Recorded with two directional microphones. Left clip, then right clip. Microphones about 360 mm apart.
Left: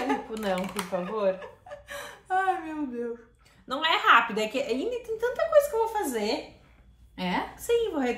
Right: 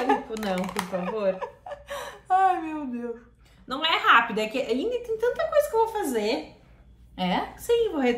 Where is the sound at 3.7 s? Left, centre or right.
Centre.